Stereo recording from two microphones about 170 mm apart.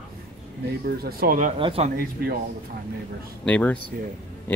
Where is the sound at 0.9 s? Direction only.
60° right (ahead or behind).